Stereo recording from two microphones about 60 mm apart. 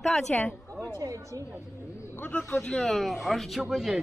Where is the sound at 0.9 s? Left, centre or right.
Right.